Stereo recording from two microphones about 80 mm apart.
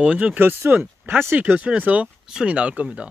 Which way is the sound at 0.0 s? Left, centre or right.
Centre.